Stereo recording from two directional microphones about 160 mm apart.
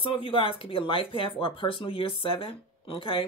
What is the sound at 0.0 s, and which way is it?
Speech, 35° left (ahead or behind).